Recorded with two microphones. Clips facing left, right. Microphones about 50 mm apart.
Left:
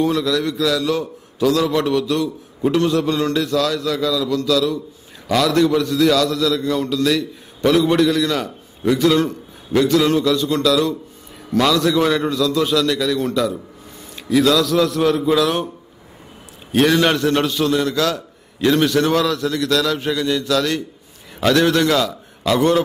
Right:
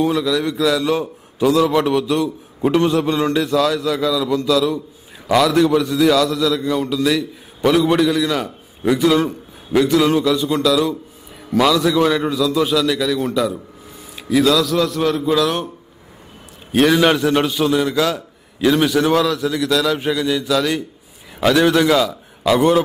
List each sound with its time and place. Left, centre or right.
0.0 s a man's voice: centre
16.7 s a man's voice: centre